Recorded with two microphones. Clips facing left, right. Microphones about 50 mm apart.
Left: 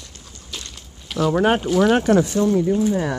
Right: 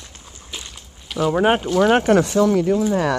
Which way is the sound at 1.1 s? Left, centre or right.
Centre.